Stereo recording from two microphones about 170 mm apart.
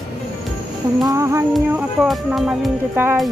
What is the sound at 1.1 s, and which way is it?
Music, 15° right (ahead or behind).